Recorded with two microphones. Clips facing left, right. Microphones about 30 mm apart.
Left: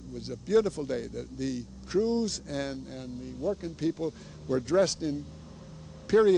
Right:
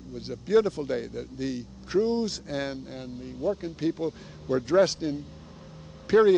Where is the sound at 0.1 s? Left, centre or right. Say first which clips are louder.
Right 3 dB; centre.